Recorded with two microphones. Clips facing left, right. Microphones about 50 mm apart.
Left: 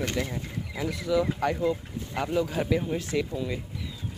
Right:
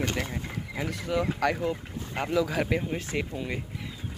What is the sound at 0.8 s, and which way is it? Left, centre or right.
Speech, right.